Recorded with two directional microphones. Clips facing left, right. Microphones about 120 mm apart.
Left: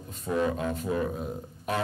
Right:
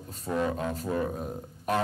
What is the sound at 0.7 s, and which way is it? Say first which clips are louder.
Speech: left 1 dB; 40° right (ahead or behind).